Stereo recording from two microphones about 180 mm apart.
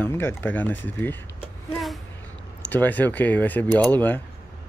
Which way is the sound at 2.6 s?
10° left (ahead or behind).